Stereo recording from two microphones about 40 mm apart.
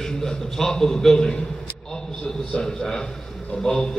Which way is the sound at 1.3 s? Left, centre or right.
Centre.